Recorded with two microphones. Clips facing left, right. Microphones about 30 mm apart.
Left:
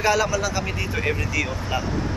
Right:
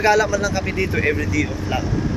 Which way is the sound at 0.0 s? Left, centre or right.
Centre.